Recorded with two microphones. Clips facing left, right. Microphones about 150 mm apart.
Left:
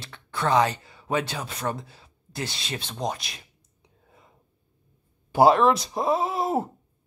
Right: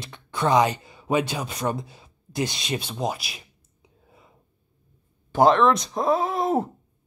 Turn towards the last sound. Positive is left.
turn(degrees=5)  # may be behind; listen again after turning